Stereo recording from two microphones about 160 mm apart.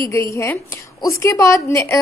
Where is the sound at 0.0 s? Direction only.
20° left (ahead or behind).